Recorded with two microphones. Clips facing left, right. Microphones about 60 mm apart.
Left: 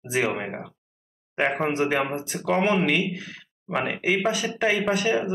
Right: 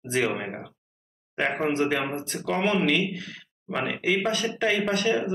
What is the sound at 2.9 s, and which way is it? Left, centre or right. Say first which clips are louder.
Speech: left 1 dB; centre.